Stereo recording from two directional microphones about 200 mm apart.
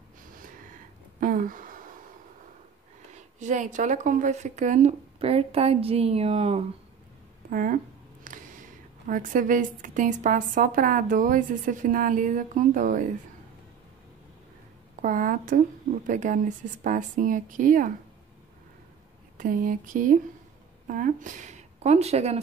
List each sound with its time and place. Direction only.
1.2 s a sound: 40° right (ahead or behind)
3.1 s speech: 35° right (ahead or behind)
7.4 s speech: 45° right (ahead or behind)
15.0 s speech: 40° right (ahead or behind)
19.3 s a sound: 45° right (ahead or behind)
20.8 s speech: 40° right (ahead or behind)